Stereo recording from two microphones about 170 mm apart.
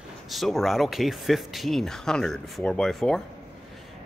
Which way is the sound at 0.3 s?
Centre (ahead or behind).